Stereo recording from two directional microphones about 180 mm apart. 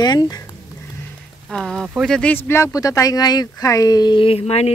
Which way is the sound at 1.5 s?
Centre (ahead or behind).